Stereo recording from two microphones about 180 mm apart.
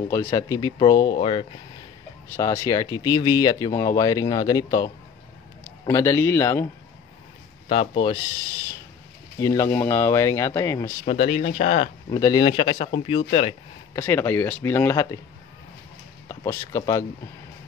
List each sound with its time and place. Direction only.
0.1 s speech: 20° left (ahead or behind)
7.6 s speech: 30° left (ahead or behind)
9.4 s speech: 15° left (ahead or behind)
11.1 s speech: 35° left (ahead or behind)
12.1 s speech: 20° left (ahead or behind)
13.9 s speech: 15° left (ahead or behind)
16.3 s speech: 15° left (ahead or behind)